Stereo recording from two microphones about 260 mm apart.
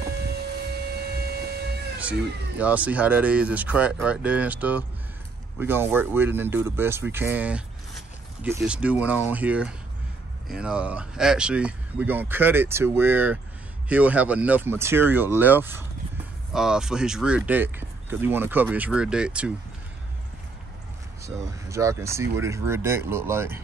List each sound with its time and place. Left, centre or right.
0.2 s a sound: right
2.6 s speech: centre
21.2 s speech: centre